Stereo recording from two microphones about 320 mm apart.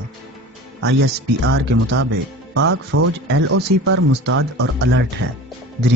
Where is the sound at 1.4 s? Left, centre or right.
Right.